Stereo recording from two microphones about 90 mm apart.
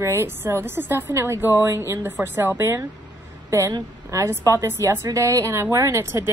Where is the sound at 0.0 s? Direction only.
30° right (ahead or behind).